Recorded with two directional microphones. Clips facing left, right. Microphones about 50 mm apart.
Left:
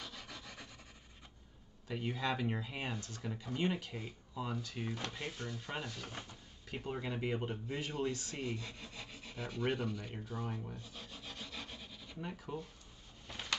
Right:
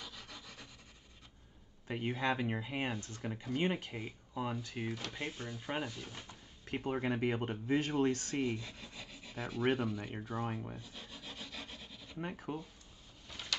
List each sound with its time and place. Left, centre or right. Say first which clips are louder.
0.0 s rub: left 1 dB; centre
1.9 s speech: right 2 dB; right
6.6 s speech: right 5 dB; right
8.4 s speech: right 5 dB; right
9.0 s rub: left 1 dB; centre
9.3 s speech: right 4 dB; centre
11.0 s rub: even; centre
12.2 s speech: right 4 dB; right
13.3 s a sound: left 1 dB; left